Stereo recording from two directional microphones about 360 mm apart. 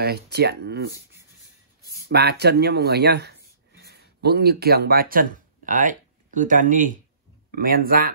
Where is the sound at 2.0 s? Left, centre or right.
Right.